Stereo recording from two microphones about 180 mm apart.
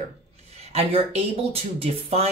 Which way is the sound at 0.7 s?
35° right (ahead or behind).